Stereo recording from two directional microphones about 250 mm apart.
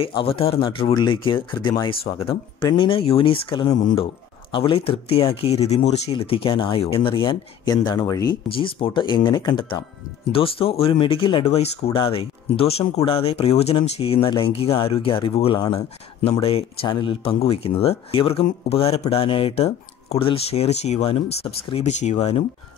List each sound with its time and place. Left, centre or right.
0.0 s speech: left